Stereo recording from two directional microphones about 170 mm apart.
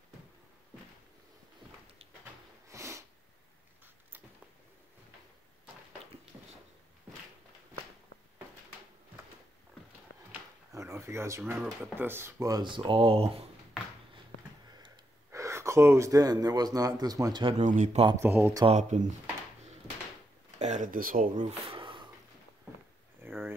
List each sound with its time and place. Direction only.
2.7 s sniff: 15° right (ahead or behind)
10.3 s a sound: 15° right (ahead or behind)
11.6 s speech: 10° right (ahead or behind); by 13.5 s 35° right (ahead or behind)
15.3 s speech: 15° right (ahead or behind)
17.6 s speech: 45° right (ahead or behind)
18.2 s speech: 10° right (ahead or behind)
18.8 s speech: 45° right (ahead or behind)
20.5 s speech: 45° right (ahead or behind)
21.5 s a sound: 30° right (ahead or behind)
23.2 s a sound: 15° right (ahead or behind)